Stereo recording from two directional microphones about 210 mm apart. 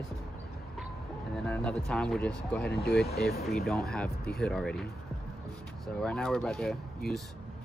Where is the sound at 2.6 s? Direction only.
50° left (ahead or behind).